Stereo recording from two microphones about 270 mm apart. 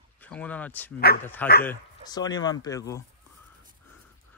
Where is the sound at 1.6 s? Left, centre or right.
Centre.